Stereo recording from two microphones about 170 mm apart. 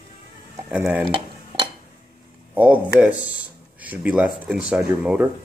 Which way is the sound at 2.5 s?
10° right (ahead or behind).